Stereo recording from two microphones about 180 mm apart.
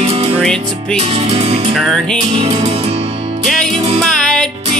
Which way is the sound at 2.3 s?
35° right (ahead or behind).